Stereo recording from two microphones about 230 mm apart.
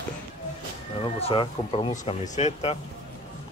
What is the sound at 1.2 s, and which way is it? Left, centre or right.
Speech, left.